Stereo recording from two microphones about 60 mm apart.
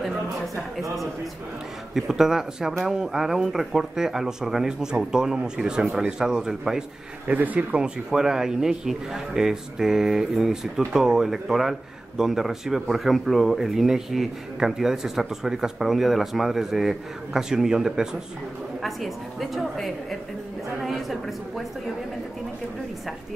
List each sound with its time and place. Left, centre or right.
2.0 s speech: centre
7.2 s speech: right
7.8 s speech: centre